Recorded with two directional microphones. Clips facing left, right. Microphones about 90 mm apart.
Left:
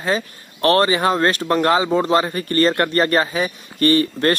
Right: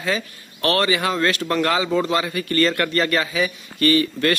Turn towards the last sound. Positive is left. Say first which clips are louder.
# left 2 dB
turn(degrees=35)  # may be behind; listen again after turning